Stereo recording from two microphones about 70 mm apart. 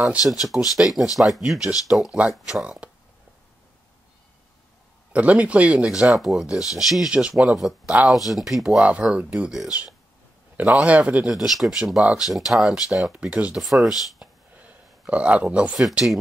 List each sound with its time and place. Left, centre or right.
0.3 s speech: centre
5.1 s speech: centre
7.1 s speech: centre
7.3 s speech: centre
8.1 s speech: centre
8.7 s speech: centre
10.6 s a man's voice: right
11.3 s speech: centre
13.2 s speech: centre
13.6 s speech: centre
14.6 s a sound: centre